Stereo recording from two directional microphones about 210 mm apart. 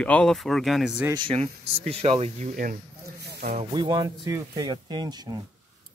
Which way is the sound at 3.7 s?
20° right (ahead or behind).